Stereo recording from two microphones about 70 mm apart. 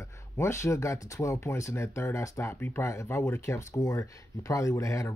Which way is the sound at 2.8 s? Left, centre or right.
Left.